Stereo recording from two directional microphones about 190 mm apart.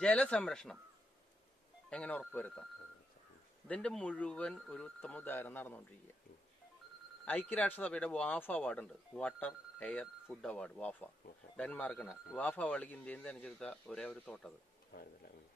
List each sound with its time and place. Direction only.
0.0 s speech: 5° left (ahead or behind)
1.9 s speech: 5° left (ahead or behind)
3.6 s speech: 5° left (ahead or behind)
7.2 s speech: 10° left (ahead or behind)
14.9 s speech: 50° left (ahead or behind)